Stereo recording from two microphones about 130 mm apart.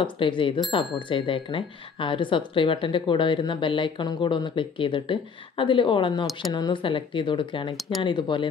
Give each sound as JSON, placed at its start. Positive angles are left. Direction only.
{"t": 0.0, "sound": "speech", "side_deg": 40}